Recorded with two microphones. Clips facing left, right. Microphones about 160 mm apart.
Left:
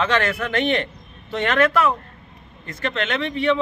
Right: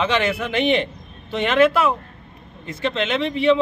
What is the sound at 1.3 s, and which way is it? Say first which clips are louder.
Speech: right 2 dB; 20° right (ahead or behind).